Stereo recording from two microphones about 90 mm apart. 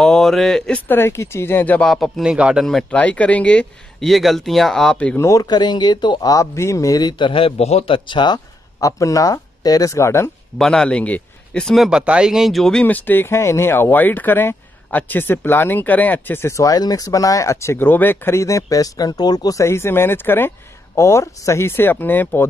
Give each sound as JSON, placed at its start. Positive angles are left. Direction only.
{"t": 0.0, "sound": "speech", "side_deg": 5}
{"t": 0.8, "sound": "speech", "side_deg": 25}
{"t": 1.8, "sound": "speech", "side_deg": 5}
{"t": 2.2, "sound": "a man's voice", "side_deg": -10}
{"t": 2.6, "sound": "speech", "side_deg": 5}
{"t": 3.0, "sound": "speech", "side_deg": 15}
{"t": 4.0, "sound": "speech", "side_deg": 0}
{"t": 5.1, "sound": "a man's voice", "side_deg": 35}
{"t": 6.3, "sound": "a man's voice", "side_deg": 30}
{"t": 8.7, "sound": "speech", "side_deg": 40}
{"t": 10.6, "sound": "speech", "side_deg": 5}
{"t": 11.6, "sound": "speech", "side_deg": 0}
{"t": 12.8, "sound": "speech", "side_deg": 20}
{"t": 19.6, "sound": "speech", "side_deg": 30}